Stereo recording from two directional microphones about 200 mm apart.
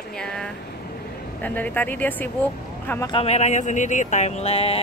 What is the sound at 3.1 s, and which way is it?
Speech, 30° left (ahead or behind).